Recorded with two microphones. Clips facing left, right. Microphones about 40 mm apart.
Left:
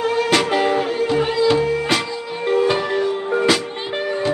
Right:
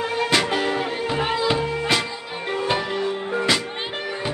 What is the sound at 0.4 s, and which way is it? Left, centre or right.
Music, centre.